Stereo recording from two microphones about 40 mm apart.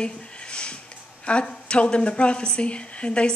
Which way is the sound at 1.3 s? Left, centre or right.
Left.